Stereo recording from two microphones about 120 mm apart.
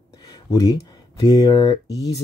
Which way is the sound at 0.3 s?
30° left (ahead or behind).